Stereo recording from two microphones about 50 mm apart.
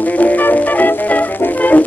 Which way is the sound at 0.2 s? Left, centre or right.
Left.